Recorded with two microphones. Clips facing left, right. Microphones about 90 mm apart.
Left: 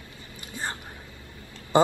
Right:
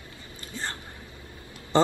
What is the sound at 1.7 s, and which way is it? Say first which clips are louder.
Speech: left 2 dB; 15° left (ahead or behind).